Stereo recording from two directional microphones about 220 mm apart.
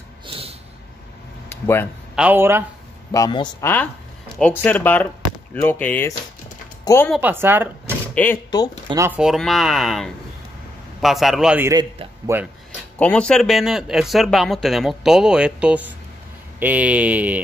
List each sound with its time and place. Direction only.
0.3 s a sound: 25° right (ahead or behind)
2.1 s speech: 10° right (ahead or behind)
3.1 s speech: 20° left (ahead or behind)
3.6 s speech: 10° left (ahead or behind)
6.8 s a sound: 15° left (ahead or behind)
7.1 s speech: 10° right (ahead or behind)
8.1 s speech: 10° left (ahead or behind)
8.8 s speech: 15° right (ahead or behind)
13.0 s speech: 5° left (ahead or behind)